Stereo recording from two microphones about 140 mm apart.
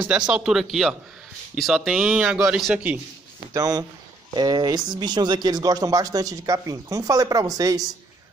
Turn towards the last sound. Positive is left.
turn(degrees=-25)  # may be behind; listen again after turning